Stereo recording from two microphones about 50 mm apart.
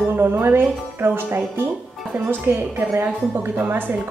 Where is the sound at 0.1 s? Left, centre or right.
Right.